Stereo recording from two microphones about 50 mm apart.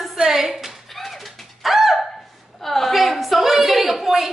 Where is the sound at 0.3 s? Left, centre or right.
Centre.